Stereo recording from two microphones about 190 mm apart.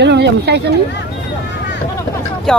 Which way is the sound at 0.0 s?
60° right (ahead or behind).